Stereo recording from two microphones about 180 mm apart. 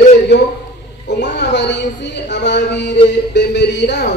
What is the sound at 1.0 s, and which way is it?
Speech, 75° left (ahead or behind).